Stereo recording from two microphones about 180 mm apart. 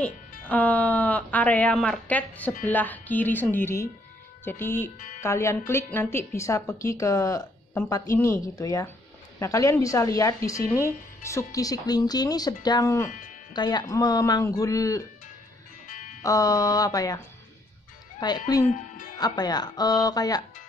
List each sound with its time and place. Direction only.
0.0 s speech: 10° left (ahead or behind)
16.2 s speech: 20° left (ahead or behind)
18.2 s speech: 20° left (ahead or behind)